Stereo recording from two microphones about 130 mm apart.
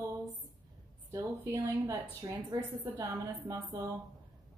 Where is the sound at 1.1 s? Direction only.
25° right (ahead or behind).